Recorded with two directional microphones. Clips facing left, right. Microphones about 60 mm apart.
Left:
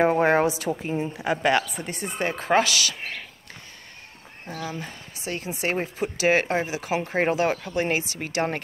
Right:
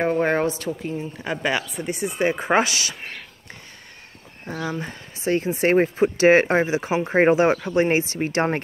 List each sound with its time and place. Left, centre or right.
0.0 s a sound: centre
0.7 s a woman's voice: left
1.1 s speech: centre
2.3 s speech: right
4.5 s speech: right